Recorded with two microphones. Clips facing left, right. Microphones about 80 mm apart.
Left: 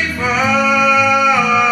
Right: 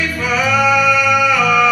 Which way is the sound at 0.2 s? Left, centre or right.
Left.